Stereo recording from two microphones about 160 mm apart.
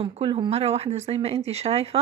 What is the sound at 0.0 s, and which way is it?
A woman's voice, 35° right (ahead or behind).